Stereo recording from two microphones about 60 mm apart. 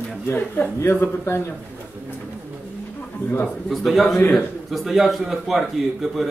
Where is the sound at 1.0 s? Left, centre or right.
Left.